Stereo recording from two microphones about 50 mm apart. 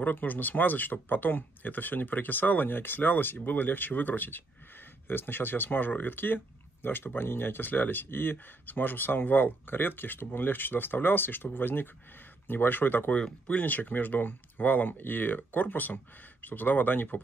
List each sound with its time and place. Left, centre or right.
0.0 s speech: left
13.1 s speech: left
13.7 s speech: left